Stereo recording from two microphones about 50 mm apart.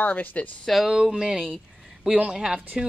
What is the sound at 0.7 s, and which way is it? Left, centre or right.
Speech, centre.